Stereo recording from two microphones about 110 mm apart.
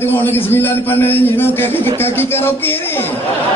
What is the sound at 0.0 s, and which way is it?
A man's voice, 20° left (ahead or behind).